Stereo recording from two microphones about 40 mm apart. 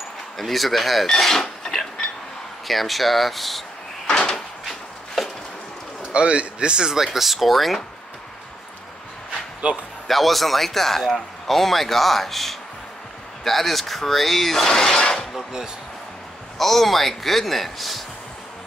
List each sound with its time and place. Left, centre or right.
0.4 s speech: centre
1.0 s a sound: centre
2.7 s speech: centre
4.1 s door: centre
4.6 s a sound: centre
6.1 s speech: right; by 7.8 s centre
9.6 s speech: right
10.0 s speech: centre
16.5 s speech: centre